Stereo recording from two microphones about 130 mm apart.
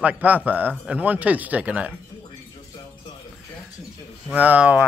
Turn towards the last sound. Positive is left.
turn(degrees=-10)  # may be behind; listen again after turning